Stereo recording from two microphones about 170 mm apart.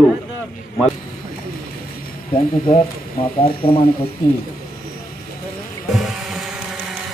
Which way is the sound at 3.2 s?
30° left (ahead or behind).